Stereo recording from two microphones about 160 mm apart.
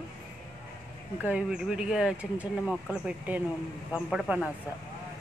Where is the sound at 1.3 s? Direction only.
5° right (ahead or behind).